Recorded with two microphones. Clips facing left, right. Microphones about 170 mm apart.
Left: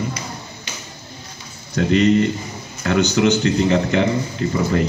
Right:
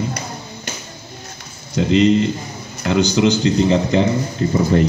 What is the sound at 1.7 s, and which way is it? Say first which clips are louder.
Speech: right 1 dB; 20° right (ahead or behind).